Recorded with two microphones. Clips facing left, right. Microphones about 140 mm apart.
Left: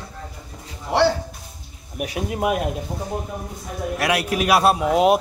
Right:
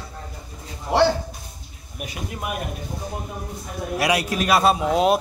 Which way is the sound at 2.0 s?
85° left.